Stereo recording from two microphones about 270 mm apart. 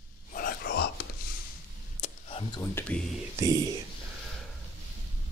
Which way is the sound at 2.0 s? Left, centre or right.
Centre.